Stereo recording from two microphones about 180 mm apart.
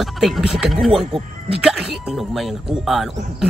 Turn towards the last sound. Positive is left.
turn(degrees=0)  # may be behind; listen again after turning